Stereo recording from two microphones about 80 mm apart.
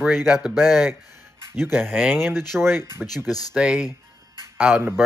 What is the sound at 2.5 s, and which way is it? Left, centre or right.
Speech, centre.